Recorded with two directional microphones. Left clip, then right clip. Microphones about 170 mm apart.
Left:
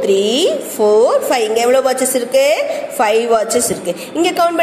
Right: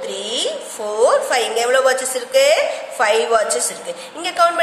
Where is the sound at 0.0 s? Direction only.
20° left (ahead or behind).